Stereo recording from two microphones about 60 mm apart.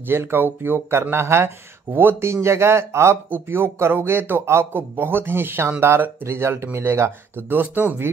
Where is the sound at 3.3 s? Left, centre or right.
Right.